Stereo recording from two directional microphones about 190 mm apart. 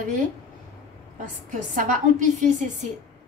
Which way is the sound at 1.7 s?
40° right (ahead or behind).